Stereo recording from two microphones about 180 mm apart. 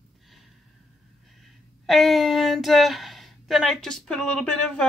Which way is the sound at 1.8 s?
Centre (ahead or behind).